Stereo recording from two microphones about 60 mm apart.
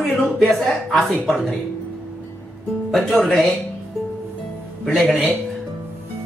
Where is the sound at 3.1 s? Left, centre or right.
Left.